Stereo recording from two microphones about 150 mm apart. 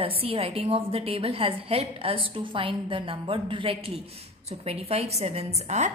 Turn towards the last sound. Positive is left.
turn(degrees=-45)  # may be behind; listen again after turning